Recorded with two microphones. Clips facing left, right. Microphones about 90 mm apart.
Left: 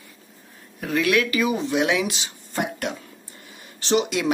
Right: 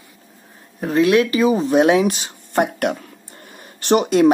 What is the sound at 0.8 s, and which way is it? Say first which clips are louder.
Speech: right 6 dB; 30° right (ahead or behind).